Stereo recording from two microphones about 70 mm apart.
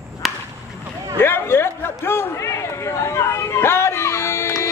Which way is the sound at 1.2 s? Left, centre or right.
Left.